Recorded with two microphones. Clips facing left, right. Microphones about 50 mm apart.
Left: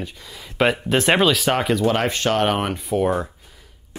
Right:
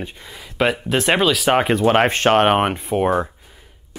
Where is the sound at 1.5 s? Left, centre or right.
Right.